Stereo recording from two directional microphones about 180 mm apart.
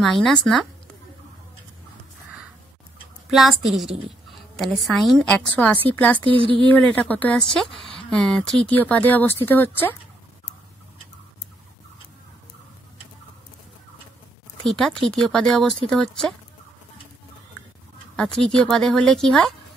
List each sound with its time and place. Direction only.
0.0 s speech: 5° left (ahead or behind)
3.3 s a woman's voice: centre (ahead or behind)
6.1 s speech: 30° right (ahead or behind)
6.7 s speech: 10° left (ahead or behind)
14.6 s speech: 5° left (ahead or behind)
18.1 s speech: 5° left (ahead or behind)